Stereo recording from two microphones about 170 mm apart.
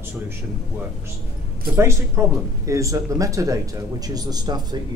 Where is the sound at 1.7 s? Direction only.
15° right (ahead or behind).